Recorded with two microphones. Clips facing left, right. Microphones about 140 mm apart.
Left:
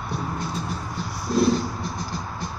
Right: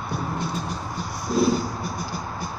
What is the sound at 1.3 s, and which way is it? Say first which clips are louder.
Music: left 1 dB; 5° right (ahead or behind).